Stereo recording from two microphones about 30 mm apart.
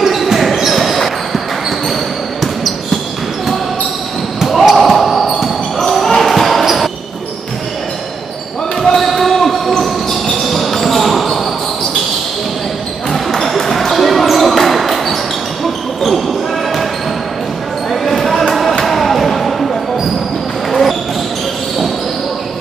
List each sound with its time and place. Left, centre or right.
0.0 s basketball bounce: centre
4.6 s basketball bounce: centre
6.6 s a sound: centre
8.8 s basketball bounce: centre
13.1 s basketball bounce: centre
18.0 s basketball bounce: centre
18.7 s a sound: centre